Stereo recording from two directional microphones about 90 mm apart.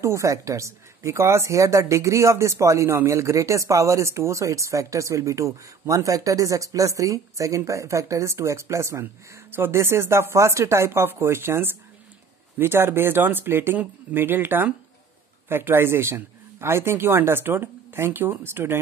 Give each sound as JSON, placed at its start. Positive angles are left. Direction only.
{"t": 0.0, "sound": "a woman's voice", "side_deg": -35}